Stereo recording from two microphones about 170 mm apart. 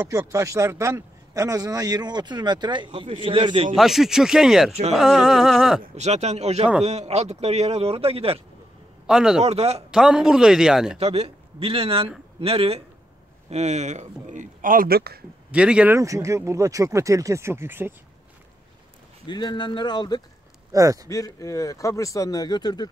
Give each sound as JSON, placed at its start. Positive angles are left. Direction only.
{"t": 0.1, "sound": "a man's voice", "side_deg": -20}
{"t": 3.7, "sound": "speech", "side_deg": 0}
{"t": 5.9, "sound": "speech", "side_deg": -40}
{"t": 9.0, "sound": "a man's voice", "side_deg": -5}
{"t": 9.4, "sound": "speech", "side_deg": -35}
{"t": 9.8, "sound": "speech", "side_deg": -5}
{"t": 11.0, "sound": "speech", "side_deg": -35}
{"t": 15.5, "sound": "speech", "side_deg": -5}
{"t": 16.0, "sound": "speech", "side_deg": -20}
{"t": 19.2, "sound": "speech", "side_deg": 25}
{"t": 20.7, "sound": "a man's voice", "side_deg": -20}
{"t": 21.1, "sound": "speech", "side_deg": 20}